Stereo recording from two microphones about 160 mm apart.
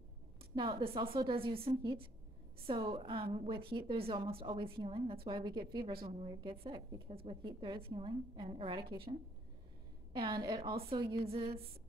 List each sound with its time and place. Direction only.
0.6 s a woman's voice: 35° right (ahead or behind)
10.1 s a woman's voice: 30° right (ahead or behind)